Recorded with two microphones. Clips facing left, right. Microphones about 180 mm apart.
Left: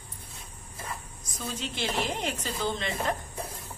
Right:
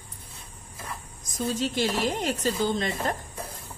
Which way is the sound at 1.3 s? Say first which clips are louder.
Right 8 dB; 40° right (ahead or behind).